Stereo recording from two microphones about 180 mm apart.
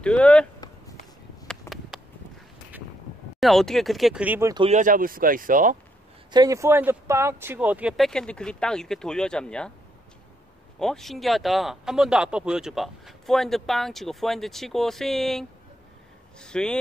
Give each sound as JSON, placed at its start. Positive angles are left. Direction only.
{"t": 0.0, "sound": "speech", "side_deg": 5}
{"t": 1.7, "sound": "a sound", "side_deg": 15}
{"t": 3.3, "sound": "speech", "side_deg": 0}
{"t": 4.6, "sound": "speech", "side_deg": -40}
{"t": 6.3, "sound": "speech", "side_deg": -20}
{"t": 10.8, "sound": "speech", "side_deg": 0}